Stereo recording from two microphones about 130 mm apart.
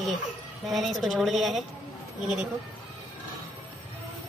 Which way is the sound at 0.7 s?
Centre (ahead or behind).